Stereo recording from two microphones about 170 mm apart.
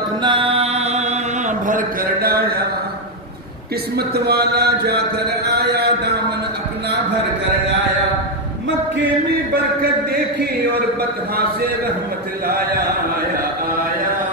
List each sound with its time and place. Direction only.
0.2 s mantra: 30° right (ahead or behind); by 2.6 s 65° right (ahead or behind)
3.9 s a sound: 70° right (ahead or behind)
11.0 s a man's voice: 65° right (ahead or behind)